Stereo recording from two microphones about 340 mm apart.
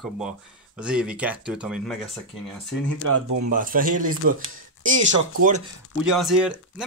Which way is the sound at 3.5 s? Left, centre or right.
Right.